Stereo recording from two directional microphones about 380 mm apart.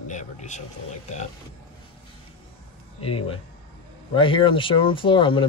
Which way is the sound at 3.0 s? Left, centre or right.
Centre.